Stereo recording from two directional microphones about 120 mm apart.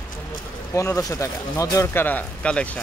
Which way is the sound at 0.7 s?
25° left (ahead or behind).